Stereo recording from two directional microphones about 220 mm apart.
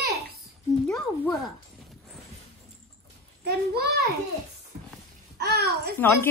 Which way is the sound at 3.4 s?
45° right (ahead or behind).